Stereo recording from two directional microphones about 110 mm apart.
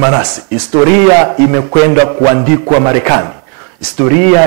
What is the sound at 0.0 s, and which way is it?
A man's voice, 25° right (ahead or behind).